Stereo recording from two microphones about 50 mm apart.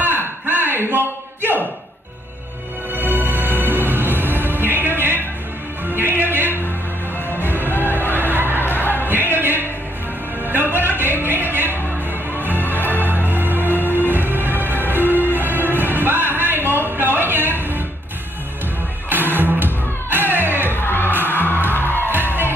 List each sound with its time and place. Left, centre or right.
0.0 s a sound: right
2.9 s music: right
8.2 s a sound: right
8.5 s music: left
9.0 s music: right
19.0 s music: right
20.7 s music: left
22.1 s music: right